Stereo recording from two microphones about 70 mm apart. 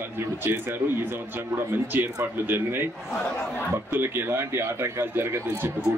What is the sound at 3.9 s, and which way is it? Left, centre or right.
Speech, right.